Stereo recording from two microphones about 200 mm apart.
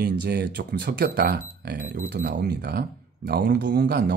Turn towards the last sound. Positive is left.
turn(degrees=-55)  # may be behind; listen again after turning